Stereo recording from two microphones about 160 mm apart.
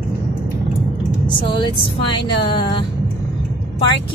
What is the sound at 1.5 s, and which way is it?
Speech, 30° left (ahead or behind).